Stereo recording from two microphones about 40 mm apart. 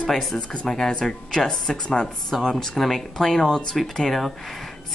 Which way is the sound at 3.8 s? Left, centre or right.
Centre.